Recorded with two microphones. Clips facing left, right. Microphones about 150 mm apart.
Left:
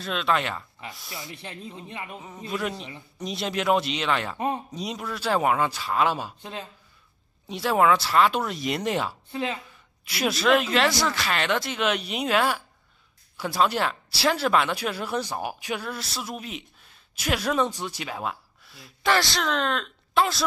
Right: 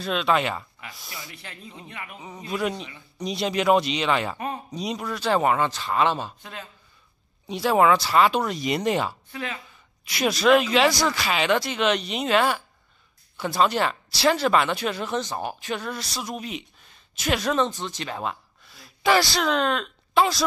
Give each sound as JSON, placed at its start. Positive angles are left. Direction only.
{"t": 0.0, "sound": "speech", "side_deg": 0}
{"t": 1.1, "sound": "speech", "side_deg": 25}
{"t": 2.1, "sound": "speech", "side_deg": 0}
{"t": 6.4, "sound": "speech", "side_deg": 30}
{"t": 7.4, "sound": "speech", "side_deg": 0}
{"t": 9.3, "sound": "speech", "side_deg": 30}
{"t": 10.0, "sound": "speech", "side_deg": 5}